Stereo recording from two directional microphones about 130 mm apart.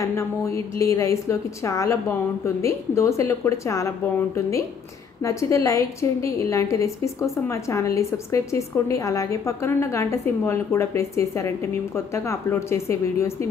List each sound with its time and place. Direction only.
0.0 s a woman's voice: 20° left (ahead or behind)
5.2 s a woman's voice: 25° left (ahead or behind)